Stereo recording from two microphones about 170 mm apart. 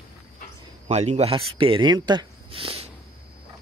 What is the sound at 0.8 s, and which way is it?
Speech, 40° right (ahead or behind).